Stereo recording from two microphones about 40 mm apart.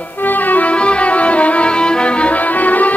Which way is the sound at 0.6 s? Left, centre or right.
Left.